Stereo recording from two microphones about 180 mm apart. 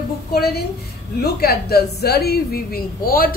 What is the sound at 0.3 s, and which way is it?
A woman's voice, 60° left (ahead or behind).